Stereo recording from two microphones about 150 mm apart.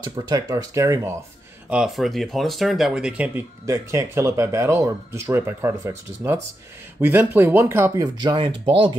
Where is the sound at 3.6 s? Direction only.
20° right (ahead or behind).